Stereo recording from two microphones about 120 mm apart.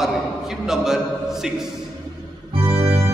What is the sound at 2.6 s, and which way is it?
Music, 20° right (ahead or behind).